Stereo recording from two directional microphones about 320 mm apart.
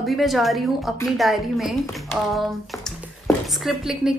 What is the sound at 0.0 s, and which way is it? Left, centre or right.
A woman's voice, centre.